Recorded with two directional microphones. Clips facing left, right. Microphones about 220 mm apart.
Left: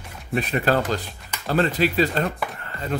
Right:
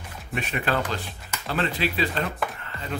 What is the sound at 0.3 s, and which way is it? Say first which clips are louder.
Speech: left 6 dB; 35° left (ahead or behind).